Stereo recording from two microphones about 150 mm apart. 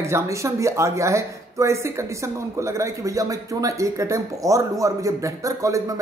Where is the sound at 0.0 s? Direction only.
20° right (ahead or behind).